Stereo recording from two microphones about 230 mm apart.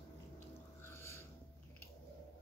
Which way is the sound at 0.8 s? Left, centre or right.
Centre.